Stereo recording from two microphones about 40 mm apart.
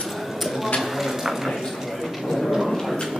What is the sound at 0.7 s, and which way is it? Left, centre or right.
Clip-clop, centre.